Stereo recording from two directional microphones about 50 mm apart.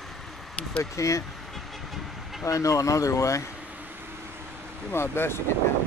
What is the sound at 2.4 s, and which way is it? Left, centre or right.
Speech, left.